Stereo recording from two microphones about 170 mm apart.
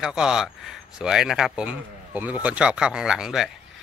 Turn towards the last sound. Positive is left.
turn(degrees=0)  # may be behind; listen again after turning